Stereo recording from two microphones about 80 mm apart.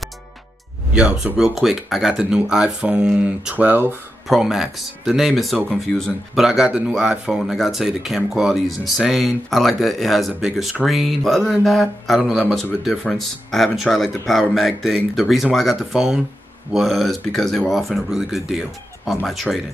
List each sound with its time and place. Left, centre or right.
0.9 s speech: centre
4.3 s speech: centre
6.4 s speech: centre